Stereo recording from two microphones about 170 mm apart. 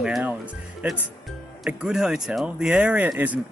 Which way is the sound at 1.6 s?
5° right (ahead or behind).